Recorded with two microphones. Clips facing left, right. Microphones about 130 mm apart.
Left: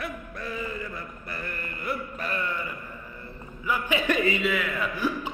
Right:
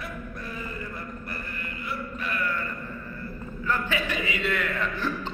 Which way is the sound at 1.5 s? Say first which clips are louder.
Left 6 dB; 55° left (ahead or behind).